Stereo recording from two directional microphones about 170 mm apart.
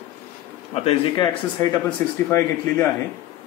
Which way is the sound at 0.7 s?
30° left (ahead or behind).